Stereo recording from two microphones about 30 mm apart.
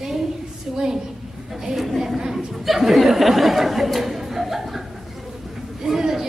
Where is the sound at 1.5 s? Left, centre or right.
Centre.